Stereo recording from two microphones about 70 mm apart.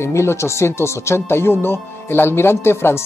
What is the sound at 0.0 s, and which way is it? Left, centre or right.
Speech, left.